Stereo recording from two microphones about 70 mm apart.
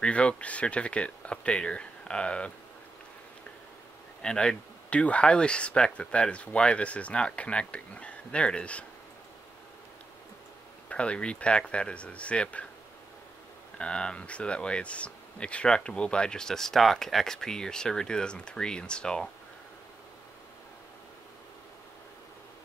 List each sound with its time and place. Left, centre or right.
0.0 s speech: centre
4.2 s speech: centre
10.9 s speech: centre
13.7 s speech: centre